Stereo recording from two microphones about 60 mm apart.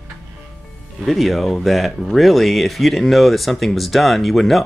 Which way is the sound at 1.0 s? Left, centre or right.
Centre.